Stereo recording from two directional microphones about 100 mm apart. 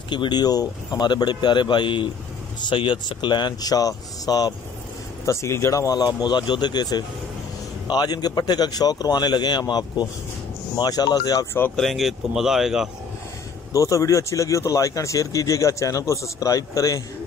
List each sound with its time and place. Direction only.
0.1 s speech: 50° left (ahead or behind)
5.2 s speech: 30° left (ahead or behind)
11.7 s speech: centre (ahead or behind)
13.7 s speech: 30° left (ahead or behind)